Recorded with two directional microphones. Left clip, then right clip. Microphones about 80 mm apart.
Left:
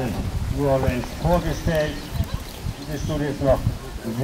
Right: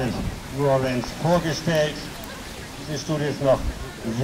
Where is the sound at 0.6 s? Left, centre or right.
Right.